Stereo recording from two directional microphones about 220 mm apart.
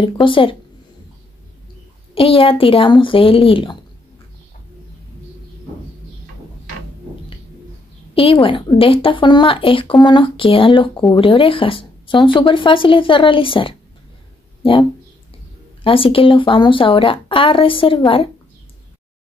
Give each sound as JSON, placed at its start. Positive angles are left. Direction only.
{"t": 0.0, "sound": "speech", "side_deg": 25}
{"t": 2.1, "sound": "speech", "side_deg": 25}
{"t": 8.1, "sound": "speech", "side_deg": 25}